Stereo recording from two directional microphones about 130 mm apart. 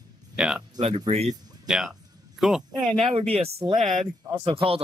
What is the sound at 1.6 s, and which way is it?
Speech, 5° right (ahead or behind).